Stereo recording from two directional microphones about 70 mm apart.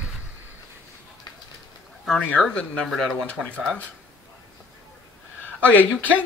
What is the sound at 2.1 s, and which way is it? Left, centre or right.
Speech, centre.